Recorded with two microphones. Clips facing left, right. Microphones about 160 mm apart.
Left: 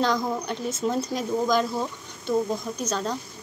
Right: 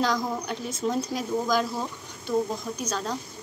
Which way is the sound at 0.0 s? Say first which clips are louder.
Left 2 dB; 10° right (ahead or behind).